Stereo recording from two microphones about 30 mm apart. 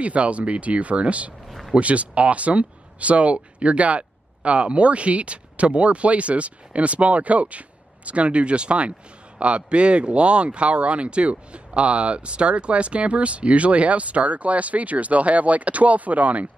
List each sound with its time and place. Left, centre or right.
0.0 s speech: right